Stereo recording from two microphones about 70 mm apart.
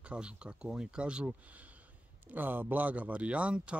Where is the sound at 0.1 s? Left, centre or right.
Centre.